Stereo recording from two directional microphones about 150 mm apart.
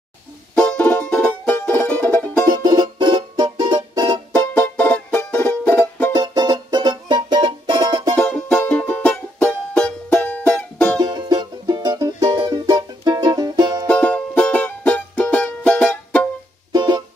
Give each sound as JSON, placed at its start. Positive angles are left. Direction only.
{"t": 0.6, "sound": "music", "side_deg": 5}
{"t": 2.5, "sound": "music", "side_deg": -30}
{"t": 4.6, "sound": "music", "side_deg": 10}
{"t": 6.1, "sound": "music", "side_deg": -25}
{"t": 8.2, "sound": "music", "side_deg": 5}
{"t": 11.0, "sound": "music", "side_deg": -30}
{"t": 13.8, "sound": "music", "side_deg": 10}
{"t": 16.7, "sound": "music", "side_deg": -30}